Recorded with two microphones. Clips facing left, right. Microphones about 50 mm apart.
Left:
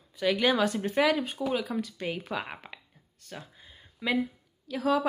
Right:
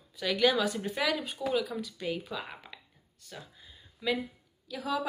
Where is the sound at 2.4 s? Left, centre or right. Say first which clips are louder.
Left 3 dB; left.